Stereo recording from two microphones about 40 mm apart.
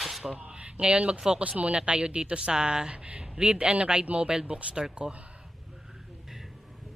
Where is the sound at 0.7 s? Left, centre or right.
Right.